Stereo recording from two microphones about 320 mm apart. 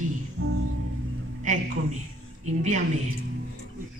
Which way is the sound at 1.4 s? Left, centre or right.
Right.